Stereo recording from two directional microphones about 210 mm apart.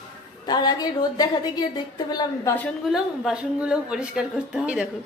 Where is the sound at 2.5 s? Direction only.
5° left (ahead or behind).